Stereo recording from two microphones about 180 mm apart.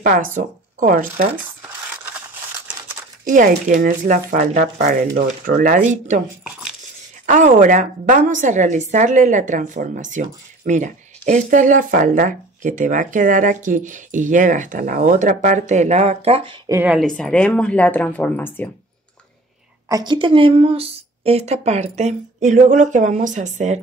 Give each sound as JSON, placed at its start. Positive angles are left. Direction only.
{"t": 0.0, "sound": "speech", "side_deg": -50}
{"t": 1.3, "sound": "crumpling", "side_deg": -10}
{"t": 3.3, "sound": "a woman's voice", "side_deg": -45}
{"t": 7.2, "sound": "a woman's voice", "side_deg": -45}
{"t": 16.6, "sound": "a woman's voice", "side_deg": -10}
{"t": 17.0, "sound": "speech", "side_deg": 5}
{"t": 19.9, "sound": "a woman's voice", "side_deg": -25}